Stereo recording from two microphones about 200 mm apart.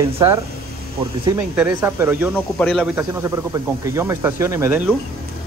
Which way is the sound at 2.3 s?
5° left (ahead or behind).